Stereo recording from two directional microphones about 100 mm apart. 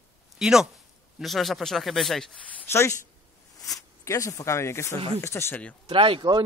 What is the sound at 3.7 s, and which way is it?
Speech, 35° left (ahead or behind).